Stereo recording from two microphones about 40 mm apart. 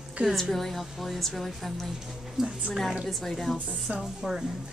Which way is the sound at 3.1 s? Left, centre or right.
Centre.